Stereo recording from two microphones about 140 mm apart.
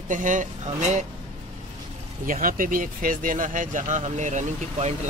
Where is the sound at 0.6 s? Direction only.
55° right (ahead or behind).